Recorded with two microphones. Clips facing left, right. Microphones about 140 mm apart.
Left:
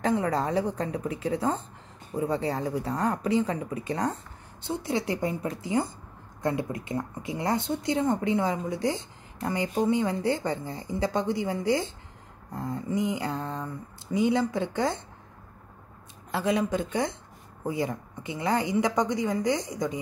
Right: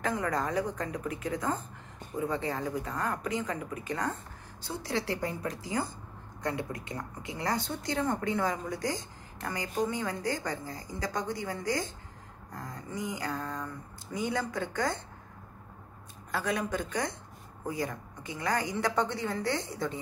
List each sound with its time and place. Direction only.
0.0 s speech: 30° left (ahead or behind)
4.6 s a woman's voice: 20° left (ahead or behind)
16.3 s a woman's voice: 25° left (ahead or behind)